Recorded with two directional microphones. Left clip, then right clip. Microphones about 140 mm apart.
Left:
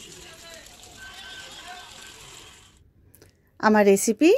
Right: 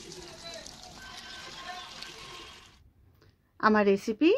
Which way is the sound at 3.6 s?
40° left (ahead or behind).